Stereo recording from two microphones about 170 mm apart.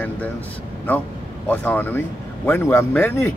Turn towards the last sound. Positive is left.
turn(degrees=15)  # may be behind; listen again after turning